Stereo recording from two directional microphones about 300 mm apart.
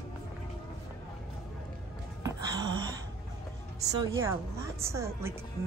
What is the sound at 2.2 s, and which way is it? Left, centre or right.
Music, centre.